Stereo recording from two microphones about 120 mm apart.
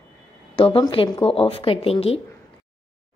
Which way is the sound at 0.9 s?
50° left (ahead or behind).